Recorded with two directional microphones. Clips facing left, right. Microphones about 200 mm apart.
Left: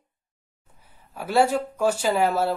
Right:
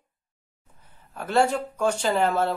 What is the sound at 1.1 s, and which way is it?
Speech, 5° left (ahead or behind).